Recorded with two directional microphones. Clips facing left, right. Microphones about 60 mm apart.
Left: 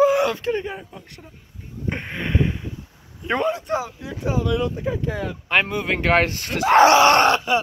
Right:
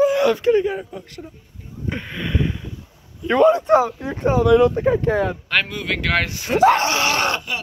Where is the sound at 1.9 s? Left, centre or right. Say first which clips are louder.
Even; left.